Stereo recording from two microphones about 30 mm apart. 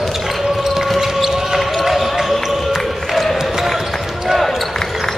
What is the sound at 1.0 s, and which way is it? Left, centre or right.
Basketball bounce, centre.